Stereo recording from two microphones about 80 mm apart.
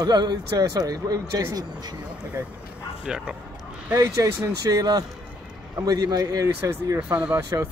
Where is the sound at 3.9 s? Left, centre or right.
Right.